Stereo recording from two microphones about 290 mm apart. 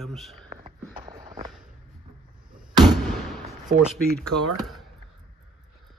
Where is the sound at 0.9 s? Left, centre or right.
Centre.